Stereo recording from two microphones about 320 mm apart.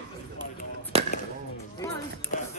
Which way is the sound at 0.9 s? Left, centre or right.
Centre.